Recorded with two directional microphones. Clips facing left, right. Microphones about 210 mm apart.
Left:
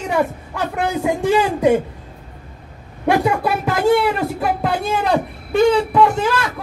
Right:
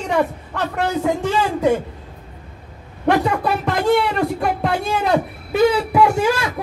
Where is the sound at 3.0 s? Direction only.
5° left (ahead or behind); by 6.2 s 10° right (ahead or behind).